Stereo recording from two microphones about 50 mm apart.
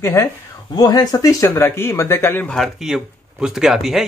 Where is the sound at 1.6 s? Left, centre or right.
Left.